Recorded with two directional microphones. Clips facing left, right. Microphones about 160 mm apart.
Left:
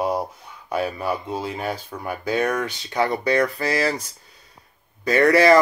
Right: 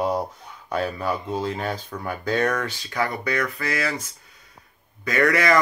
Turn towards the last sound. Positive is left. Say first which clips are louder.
# left 5 dB
turn(degrees=30)  # may be behind; listen again after turning